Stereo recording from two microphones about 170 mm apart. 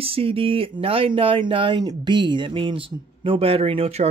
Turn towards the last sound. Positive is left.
turn(degrees=-35)  # may be behind; listen again after turning